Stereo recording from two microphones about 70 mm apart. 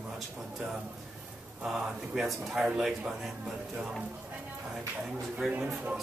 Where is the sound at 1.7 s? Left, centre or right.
Centre.